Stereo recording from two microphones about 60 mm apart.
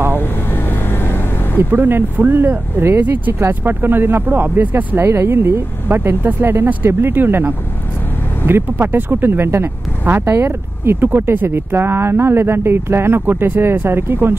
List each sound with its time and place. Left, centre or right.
0.1 s vehicle: left
1.6 s speech: right
3.3 s speech: right
5.0 s speech: right